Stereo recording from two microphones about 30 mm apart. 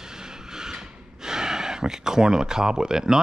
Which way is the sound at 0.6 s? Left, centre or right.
Centre.